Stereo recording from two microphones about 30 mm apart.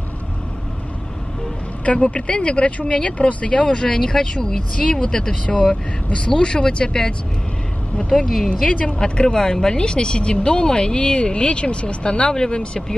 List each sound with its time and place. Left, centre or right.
2.0 s speech: left
3.6 s speech: left
4.8 s speech: left
6.3 s speech: left
8.1 s speech: left
8.5 s speech: left